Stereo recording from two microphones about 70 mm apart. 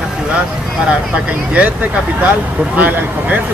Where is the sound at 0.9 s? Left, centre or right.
Centre.